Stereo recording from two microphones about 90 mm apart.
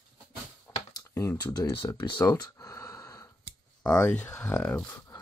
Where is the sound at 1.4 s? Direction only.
45° left (ahead or behind).